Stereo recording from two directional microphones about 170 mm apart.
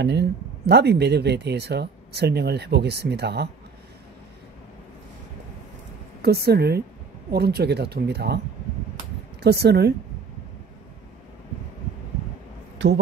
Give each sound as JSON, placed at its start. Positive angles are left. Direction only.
{"t": 0.0, "sound": "speech", "side_deg": -85}
{"t": 6.2, "sound": "speech", "side_deg": -70}
{"t": 9.4, "sound": "speech", "side_deg": -75}